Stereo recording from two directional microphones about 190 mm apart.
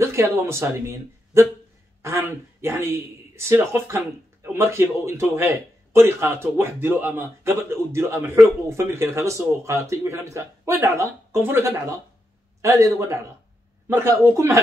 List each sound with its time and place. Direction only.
0.0 s a man's voice: 15° right (ahead or behind)